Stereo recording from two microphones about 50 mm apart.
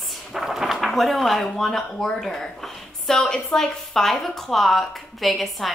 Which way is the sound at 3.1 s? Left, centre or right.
Centre.